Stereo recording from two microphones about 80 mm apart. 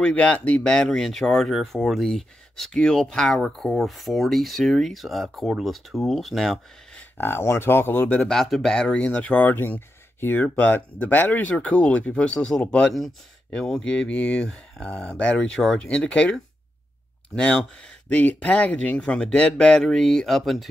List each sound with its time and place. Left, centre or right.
0.0 s speech: centre
7.0 s speech: left
8.3 s speech: centre
17.4 s speech: centre